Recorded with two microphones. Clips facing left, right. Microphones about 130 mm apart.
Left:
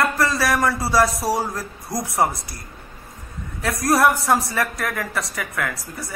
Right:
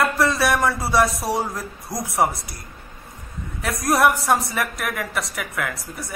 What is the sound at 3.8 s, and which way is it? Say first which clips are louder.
Speech: left 1 dB; centre (ahead or behind).